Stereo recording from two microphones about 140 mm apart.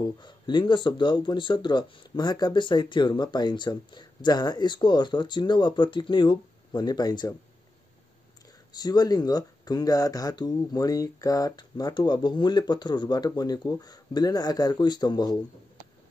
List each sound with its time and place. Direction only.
0.0 s speech: 35° left (ahead or behind)
8.7 s speech: 30° left (ahead or behind)